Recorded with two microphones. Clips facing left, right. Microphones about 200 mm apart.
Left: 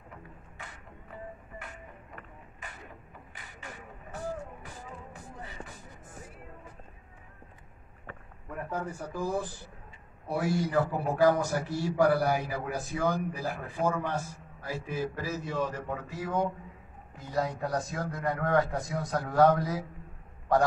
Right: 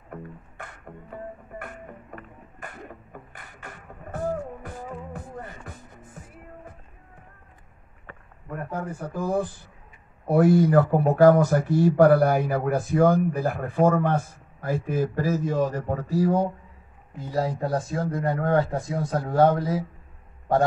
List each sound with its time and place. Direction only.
0.1 s music: 55° right (ahead or behind)
8.5 s speech: 55° right (ahead or behind); by 19.8 s 25° right (ahead or behind)